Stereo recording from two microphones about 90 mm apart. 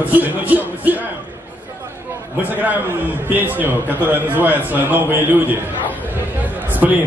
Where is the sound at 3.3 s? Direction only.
20° right (ahead or behind).